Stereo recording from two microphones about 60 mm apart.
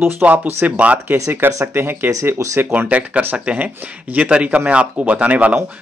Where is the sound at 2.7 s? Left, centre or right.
Right.